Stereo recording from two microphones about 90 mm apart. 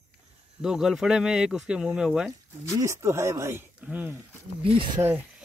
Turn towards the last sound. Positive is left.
turn(degrees=-65)  # may be behind; listen again after turning